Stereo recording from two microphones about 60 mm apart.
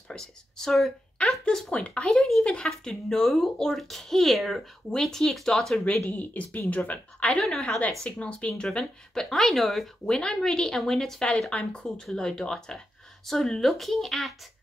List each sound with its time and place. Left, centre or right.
0.1 s a child's voice: centre
6.0 s a child's voice: left; by 9.8 s centre
10.0 s a child's voice: centre